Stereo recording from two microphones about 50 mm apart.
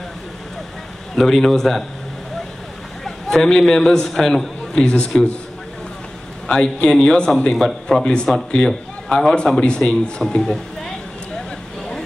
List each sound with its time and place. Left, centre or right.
1.1 s a man's voice: centre
3.0 s a man's voice: centre
6.4 s speech: centre
7.5 s a man's voice: centre
8.0 s a man's voice: centre